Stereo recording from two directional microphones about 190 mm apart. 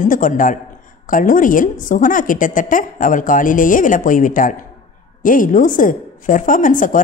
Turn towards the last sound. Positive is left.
turn(degrees=45)  # may be behind; listen again after turning